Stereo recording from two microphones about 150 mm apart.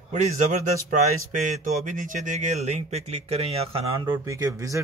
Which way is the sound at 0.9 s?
60° right (ahead or behind).